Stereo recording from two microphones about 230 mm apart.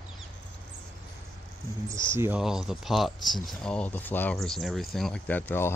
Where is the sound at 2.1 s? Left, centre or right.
Centre.